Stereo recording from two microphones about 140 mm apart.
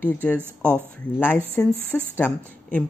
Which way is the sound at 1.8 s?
10° left (ahead or behind).